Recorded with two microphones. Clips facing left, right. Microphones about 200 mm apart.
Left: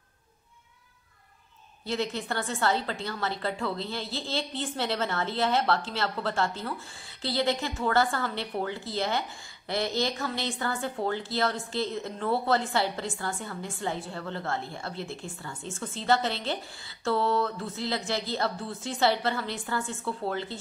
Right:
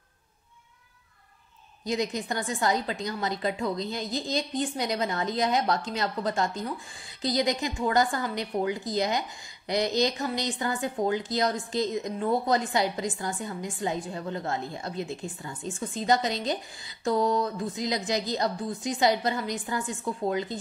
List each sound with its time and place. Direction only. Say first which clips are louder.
1.9 s speech: right 2 dB; 15° right (ahead or behind)